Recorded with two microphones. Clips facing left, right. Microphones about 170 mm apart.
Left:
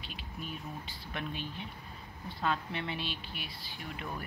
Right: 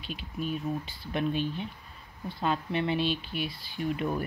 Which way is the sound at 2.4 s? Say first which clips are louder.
Right 6 dB; 25° right (ahead or behind).